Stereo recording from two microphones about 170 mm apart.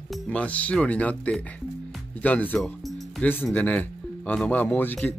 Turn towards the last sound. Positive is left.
turn(degrees=10)  # may be behind; listen again after turning